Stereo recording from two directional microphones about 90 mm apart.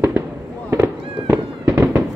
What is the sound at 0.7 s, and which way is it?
Fireworks, 25° right (ahead or behind).